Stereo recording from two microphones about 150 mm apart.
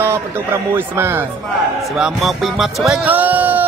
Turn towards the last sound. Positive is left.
turn(degrees=-10)  # may be behind; listen again after turning